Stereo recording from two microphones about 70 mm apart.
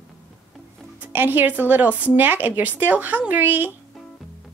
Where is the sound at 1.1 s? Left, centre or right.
Right.